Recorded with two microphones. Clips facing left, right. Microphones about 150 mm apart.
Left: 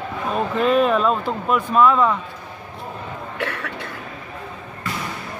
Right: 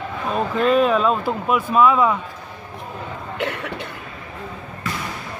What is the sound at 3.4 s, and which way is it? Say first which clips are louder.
Cough: right 2 dB; 20° right (ahead or behind).